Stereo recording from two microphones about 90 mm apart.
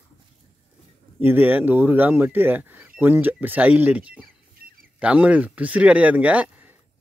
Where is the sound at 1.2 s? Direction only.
20° right (ahead or behind).